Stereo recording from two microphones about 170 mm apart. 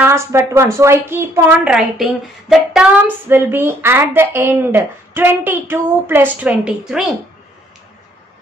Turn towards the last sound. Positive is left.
turn(degrees=-5)  # may be behind; listen again after turning